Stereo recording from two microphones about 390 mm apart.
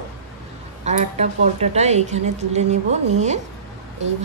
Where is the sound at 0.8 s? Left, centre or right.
Centre.